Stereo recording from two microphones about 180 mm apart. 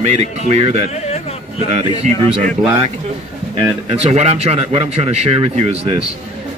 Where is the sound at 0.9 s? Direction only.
35° left (ahead or behind).